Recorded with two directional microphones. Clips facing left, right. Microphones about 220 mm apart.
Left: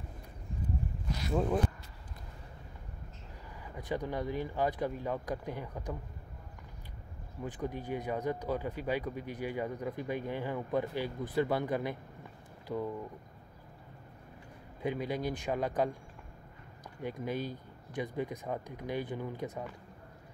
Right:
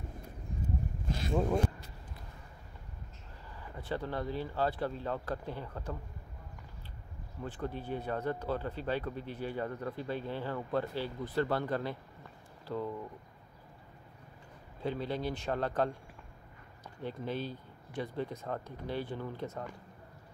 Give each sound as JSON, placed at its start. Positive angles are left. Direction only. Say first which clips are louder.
{"t": 1.0, "sound": "boat", "louder": "right 3 dB", "side_deg": -25}
{"t": 3.6, "sound": "speech", "louder": "left 1 dB", "side_deg": 15}
{"t": 7.4, "sound": "speech", "louder": "left 1 dB", "side_deg": 15}
{"t": 14.8, "sound": "speech", "louder": "left 1 dB", "side_deg": 15}
{"t": 17.0, "sound": "speech", "louder": "left 1 dB", "side_deg": 10}